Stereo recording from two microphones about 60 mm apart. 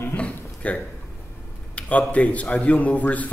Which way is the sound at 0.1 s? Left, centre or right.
Left.